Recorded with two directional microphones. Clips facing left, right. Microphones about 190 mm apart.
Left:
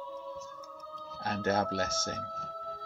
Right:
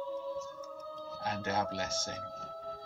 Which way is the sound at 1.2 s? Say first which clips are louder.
Left 4 dB; 45° left (ahead or behind).